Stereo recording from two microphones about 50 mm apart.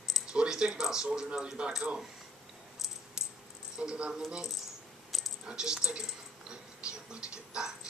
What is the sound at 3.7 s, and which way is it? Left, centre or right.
Speech, centre.